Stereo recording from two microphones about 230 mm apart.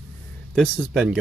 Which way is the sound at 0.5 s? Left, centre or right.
Centre.